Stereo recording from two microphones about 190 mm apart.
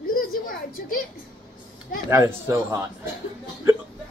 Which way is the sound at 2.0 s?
15° right (ahead or behind).